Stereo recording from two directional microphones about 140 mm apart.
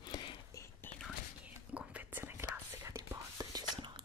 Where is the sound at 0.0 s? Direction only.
35° left (ahead or behind).